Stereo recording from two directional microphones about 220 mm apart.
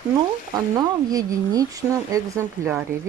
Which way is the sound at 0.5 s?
15° right (ahead or behind).